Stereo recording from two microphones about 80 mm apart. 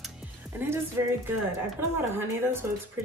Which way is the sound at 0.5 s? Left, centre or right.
Right.